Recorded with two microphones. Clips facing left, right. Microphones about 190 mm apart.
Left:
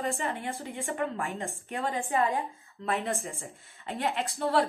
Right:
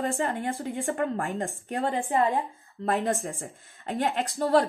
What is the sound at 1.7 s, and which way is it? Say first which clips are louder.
Speech: right 3 dB; 35° right (ahead or behind).